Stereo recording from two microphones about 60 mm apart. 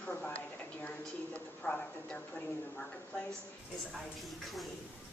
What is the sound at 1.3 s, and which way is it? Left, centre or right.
Speech, centre.